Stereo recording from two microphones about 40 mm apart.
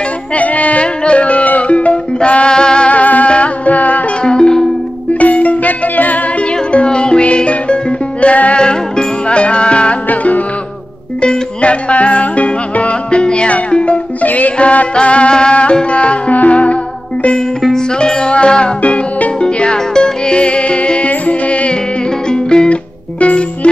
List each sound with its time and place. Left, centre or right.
0.4 s music: left
2.9 s music: left
4.2 s music: left
5.2 s music: left
6.7 s music: left
8.5 s music: left
10.0 s music: left
11.1 s music: left
14.2 s music: left
17.7 s music: centre
18.8 s music: left
19.4 s music: left
22.3 s music: left
22.7 s music: left